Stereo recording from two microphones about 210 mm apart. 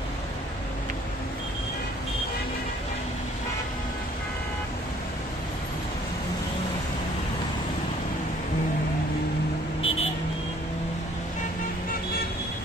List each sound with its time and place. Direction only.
9.8 s vehicle: 25° left (ahead or behind)